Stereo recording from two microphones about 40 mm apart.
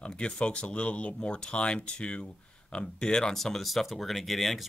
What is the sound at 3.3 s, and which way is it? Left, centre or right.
Speech, centre.